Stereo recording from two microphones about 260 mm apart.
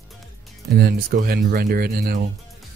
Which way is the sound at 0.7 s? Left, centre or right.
Right.